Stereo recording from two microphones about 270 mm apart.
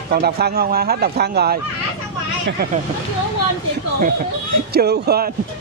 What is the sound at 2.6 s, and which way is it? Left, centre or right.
Speech, right.